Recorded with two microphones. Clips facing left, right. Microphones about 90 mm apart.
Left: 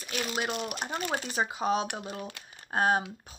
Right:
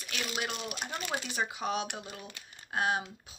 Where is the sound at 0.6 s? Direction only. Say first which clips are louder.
Left 5 dB; 50° left (ahead or behind).